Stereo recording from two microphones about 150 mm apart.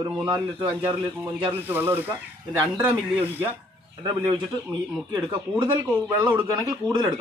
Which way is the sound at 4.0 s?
30° right (ahead or behind).